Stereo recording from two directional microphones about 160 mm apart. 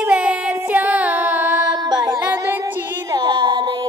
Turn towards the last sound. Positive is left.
turn(degrees=-25)  # may be behind; listen again after turning